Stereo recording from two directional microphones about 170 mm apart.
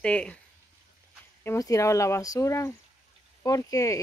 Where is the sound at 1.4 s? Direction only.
15° left (ahead or behind).